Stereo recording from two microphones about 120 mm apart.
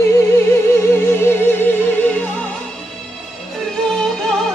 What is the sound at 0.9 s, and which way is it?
Music, 20° left (ahead or behind).